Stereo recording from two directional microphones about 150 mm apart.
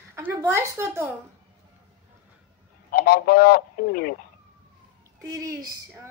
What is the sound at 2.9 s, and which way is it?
A man's voice, 85° left.